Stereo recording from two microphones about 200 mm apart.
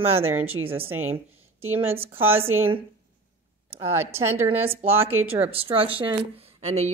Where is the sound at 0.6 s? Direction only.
25° right (ahead or behind).